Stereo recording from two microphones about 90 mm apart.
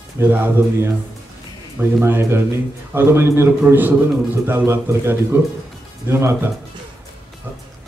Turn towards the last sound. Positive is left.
turn(degrees=-30)  # may be behind; listen again after turning